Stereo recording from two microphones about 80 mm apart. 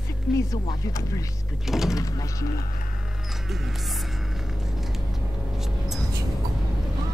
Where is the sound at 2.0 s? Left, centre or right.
Left.